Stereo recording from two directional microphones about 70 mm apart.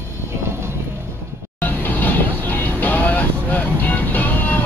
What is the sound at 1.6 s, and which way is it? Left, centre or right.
Vehicle, left.